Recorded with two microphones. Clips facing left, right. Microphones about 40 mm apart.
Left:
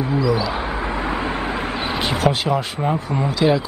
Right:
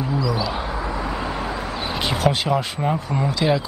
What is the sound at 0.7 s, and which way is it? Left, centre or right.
Vehicle, left.